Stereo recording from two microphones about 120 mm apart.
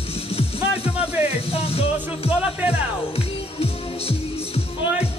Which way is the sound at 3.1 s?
55° left (ahead or behind).